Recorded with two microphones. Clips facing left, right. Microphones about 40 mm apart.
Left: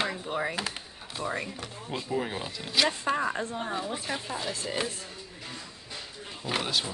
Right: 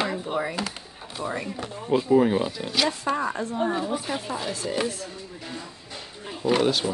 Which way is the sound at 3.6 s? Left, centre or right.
Centre.